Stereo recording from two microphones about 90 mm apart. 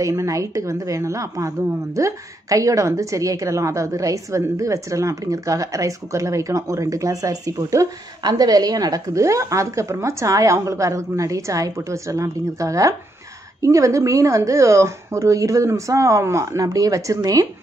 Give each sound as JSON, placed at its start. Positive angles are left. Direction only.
{"t": 0.0, "sound": "a woman's voice", "side_deg": -35}